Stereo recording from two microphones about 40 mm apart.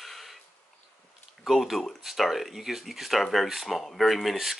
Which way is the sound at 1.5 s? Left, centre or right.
Centre.